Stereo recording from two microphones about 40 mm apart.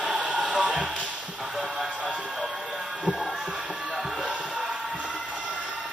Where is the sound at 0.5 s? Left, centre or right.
Right.